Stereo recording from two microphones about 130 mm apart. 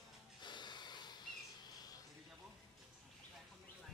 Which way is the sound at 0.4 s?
35° left (ahead or behind).